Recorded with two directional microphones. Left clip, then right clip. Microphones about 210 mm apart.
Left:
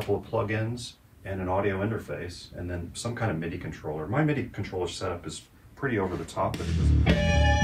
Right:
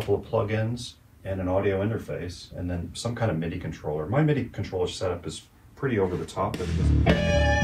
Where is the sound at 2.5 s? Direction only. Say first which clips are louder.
Right 3 dB; centre (ahead or behind).